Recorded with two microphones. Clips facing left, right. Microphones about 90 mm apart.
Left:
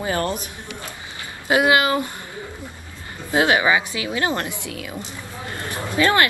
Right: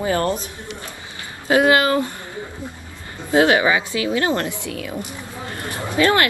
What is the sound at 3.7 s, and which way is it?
A woman's voice, 25° left (ahead or behind).